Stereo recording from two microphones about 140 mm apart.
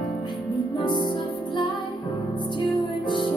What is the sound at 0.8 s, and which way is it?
Music, 35° left (ahead or behind).